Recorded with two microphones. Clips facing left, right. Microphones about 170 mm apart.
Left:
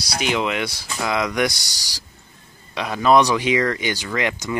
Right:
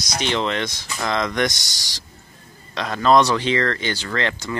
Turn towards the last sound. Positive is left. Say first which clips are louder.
# left 1 dB
turn(degrees=15)  # may be behind; listen again after turning